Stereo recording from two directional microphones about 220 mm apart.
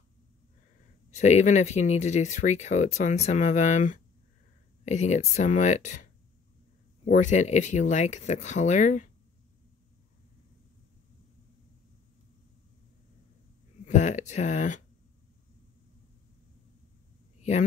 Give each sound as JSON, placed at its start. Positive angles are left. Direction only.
{"t": 1.1, "sound": "speech", "side_deg": 30}
{"t": 7.1, "sound": "speech", "side_deg": 35}
{"t": 13.8, "sound": "speech", "side_deg": 30}
{"t": 17.4, "sound": "a sound", "side_deg": 30}